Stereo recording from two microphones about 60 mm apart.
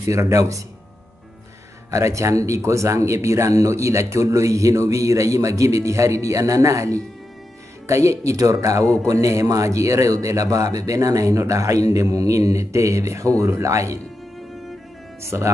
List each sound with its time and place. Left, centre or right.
0.0 s speech: right
1.9 s speech: right
15.2 s speech: right